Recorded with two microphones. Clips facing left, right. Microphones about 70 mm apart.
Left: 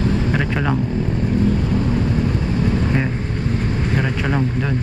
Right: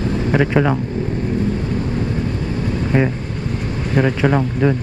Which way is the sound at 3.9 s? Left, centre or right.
Centre.